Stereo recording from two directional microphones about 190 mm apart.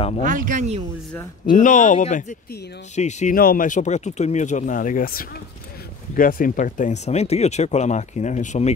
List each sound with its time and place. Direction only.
0.2 s speech: 45° right (ahead or behind)
1.4 s speech: 45° left (ahead or behind)